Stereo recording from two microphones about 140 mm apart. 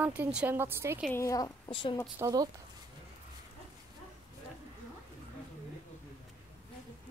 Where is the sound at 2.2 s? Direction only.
25° right (ahead or behind).